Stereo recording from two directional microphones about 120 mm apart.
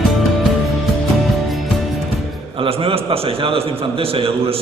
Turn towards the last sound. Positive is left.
turn(degrees=-50)  # may be behind; listen again after turning